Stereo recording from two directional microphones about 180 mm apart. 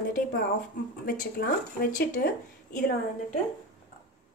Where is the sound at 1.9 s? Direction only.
50° left (ahead or behind).